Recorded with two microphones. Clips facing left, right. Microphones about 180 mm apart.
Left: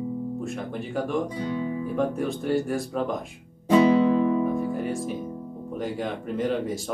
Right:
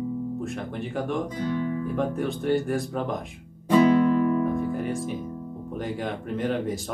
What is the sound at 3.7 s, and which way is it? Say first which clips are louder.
Music: even; 20° left (ahead or behind).